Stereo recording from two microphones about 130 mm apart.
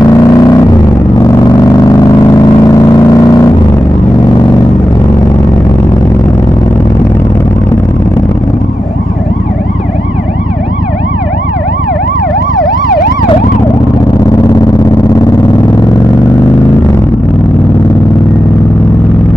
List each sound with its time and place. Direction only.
0.0 s vehicle: 25° left (ahead or behind)